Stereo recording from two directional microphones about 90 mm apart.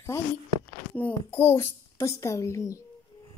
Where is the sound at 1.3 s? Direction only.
25° left (ahead or behind).